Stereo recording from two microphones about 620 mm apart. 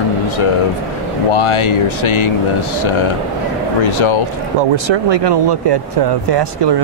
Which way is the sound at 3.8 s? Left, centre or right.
Left.